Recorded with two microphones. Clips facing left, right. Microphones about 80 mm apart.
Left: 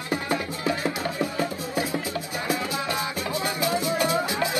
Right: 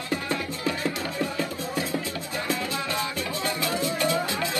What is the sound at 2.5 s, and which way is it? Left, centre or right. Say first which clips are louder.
Music: left 2 dB; centre.